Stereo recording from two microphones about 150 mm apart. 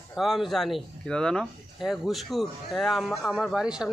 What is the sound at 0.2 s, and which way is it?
Speech, centre (ahead or behind).